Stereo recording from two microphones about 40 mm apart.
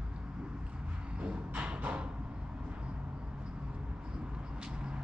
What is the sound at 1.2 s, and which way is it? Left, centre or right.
Music, right.